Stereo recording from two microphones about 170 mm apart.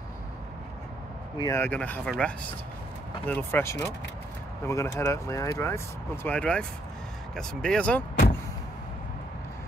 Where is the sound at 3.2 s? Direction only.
10° left (ahead or behind).